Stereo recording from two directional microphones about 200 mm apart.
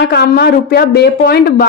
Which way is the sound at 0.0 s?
55° left (ahead or behind).